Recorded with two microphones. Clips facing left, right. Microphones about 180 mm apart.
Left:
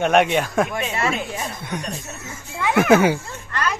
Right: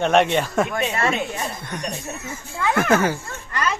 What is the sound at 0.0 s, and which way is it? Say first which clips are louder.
Speech: even; 5° left (ahead or behind).